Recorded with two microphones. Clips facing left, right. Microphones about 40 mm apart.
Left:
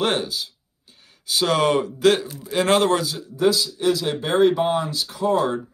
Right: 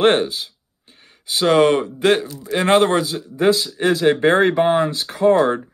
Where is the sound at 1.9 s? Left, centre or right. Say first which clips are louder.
Right 1 dB; right.